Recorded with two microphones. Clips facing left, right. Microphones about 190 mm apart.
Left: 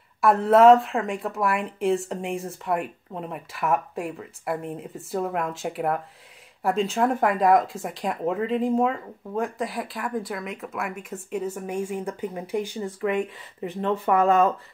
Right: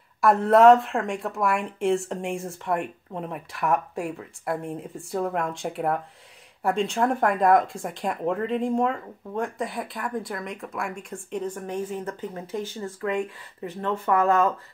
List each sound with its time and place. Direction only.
0.2 s speech: centre (ahead or behind); by 14.5 s 20° left (ahead or behind)